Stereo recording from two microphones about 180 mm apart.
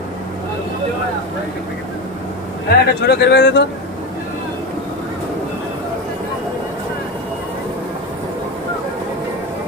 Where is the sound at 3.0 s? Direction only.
65° left (ahead or behind).